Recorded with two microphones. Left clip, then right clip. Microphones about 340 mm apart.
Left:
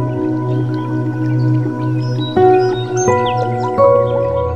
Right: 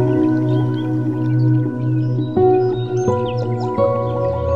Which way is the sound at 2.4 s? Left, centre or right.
Left.